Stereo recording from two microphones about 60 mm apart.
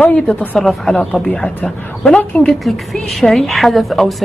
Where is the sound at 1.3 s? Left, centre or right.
Centre.